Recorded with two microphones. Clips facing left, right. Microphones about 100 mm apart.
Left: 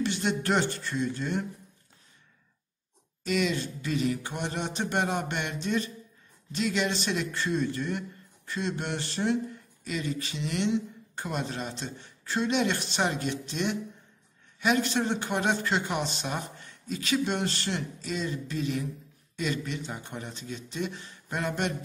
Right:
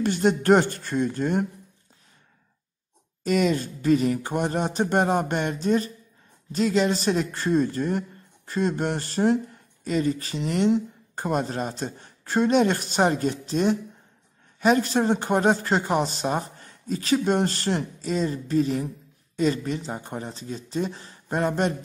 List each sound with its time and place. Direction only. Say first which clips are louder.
0.0 s a woman's voice: right 7 dB; 45° right (ahead or behind)
3.3 s speech: right 6 dB; 40° right (ahead or behind)